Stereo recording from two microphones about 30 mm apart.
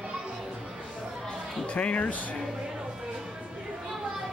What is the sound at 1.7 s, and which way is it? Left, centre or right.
Speech, left.